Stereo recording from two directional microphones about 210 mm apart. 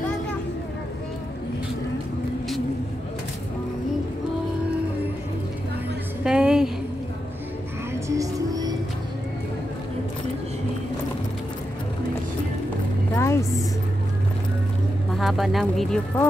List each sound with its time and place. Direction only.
6.2 s a sound: 5° right (ahead or behind)
8.1 s music: 15° right (ahead or behind)
13.1 s vehicle: 15° left (ahead or behind)
15.1 s speech: centre (ahead or behind)